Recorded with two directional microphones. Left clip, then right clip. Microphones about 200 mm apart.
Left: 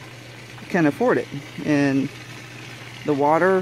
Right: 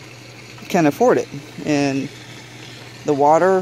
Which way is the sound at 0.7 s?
Centre (ahead or behind).